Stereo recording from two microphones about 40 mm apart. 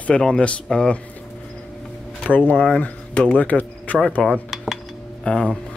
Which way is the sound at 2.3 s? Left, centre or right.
Left.